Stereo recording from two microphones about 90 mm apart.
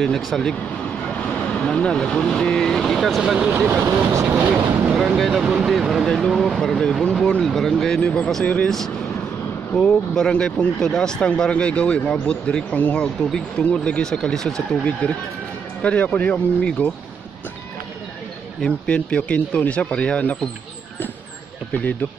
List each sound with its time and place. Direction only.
0.3 s speech: 5° left (ahead or behind); by 4.6 s 30° right (ahead or behind)
4.9 s speech: centre (ahead or behind)
18.6 s speech: 10° left (ahead or behind)